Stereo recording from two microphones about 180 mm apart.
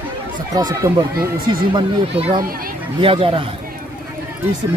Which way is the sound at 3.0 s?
30° right (ahead or behind).